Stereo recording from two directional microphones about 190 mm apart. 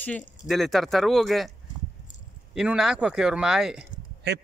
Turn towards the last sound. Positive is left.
turn(degrees=-60)  # may be behind; listen again after turning